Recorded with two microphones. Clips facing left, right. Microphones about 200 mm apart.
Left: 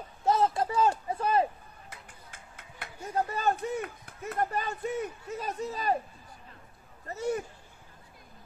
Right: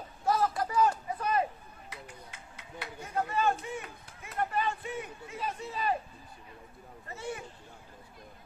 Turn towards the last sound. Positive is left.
turn(degrees=40)  # may be behind; listen again after turning